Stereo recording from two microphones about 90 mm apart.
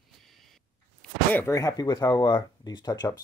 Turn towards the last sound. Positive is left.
turn(degrees=45)  # may be behind; listen again after turning